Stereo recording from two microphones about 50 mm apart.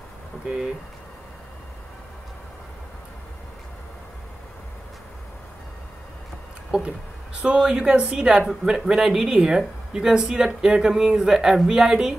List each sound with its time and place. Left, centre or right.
6.7 s speech: right